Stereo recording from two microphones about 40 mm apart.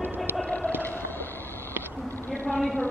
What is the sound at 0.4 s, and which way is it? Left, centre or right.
Whale vocalization, left.